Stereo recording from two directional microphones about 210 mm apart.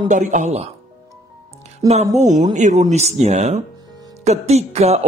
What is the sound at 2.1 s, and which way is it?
Speech, 35° right (ahead or behind).